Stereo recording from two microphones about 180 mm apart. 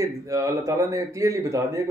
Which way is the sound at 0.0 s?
20° right (ahead or behind).